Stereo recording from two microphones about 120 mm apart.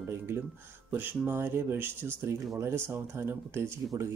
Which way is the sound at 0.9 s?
15° right (ahead or behind).